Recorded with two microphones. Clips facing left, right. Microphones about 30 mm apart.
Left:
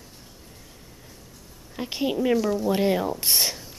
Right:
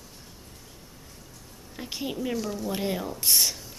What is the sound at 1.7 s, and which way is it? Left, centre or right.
A woman's voice, centre.